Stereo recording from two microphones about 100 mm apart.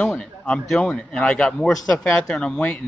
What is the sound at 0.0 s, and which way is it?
A man's voice, 5° left (ahead or behind).